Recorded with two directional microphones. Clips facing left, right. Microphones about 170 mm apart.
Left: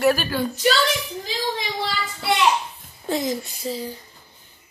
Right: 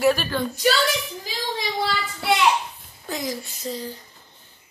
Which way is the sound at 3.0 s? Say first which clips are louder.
Left 5 dB; 25° left (ahead or behind).